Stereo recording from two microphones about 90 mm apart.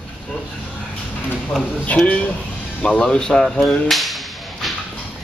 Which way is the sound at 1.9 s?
15° left (ahead or behind).